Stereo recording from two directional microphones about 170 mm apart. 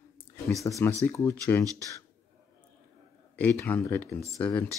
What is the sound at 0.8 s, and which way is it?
Speech, 15° left (ahead or behind).